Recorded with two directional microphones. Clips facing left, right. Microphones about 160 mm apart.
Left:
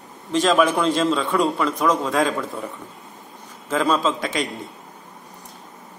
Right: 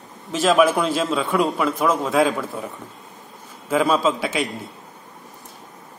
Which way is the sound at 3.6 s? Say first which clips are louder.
Right 2 dB; 10° right (ahead or behind).